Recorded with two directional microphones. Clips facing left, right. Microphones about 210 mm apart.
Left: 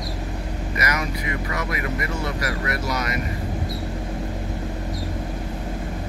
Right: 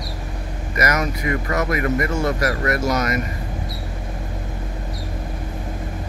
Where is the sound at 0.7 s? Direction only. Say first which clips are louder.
Right 6 dB; 45° right (ahead or behind).